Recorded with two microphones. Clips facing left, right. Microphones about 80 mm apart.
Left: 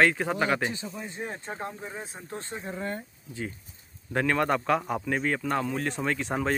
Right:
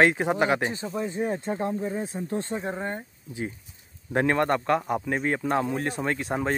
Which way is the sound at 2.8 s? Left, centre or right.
Centre.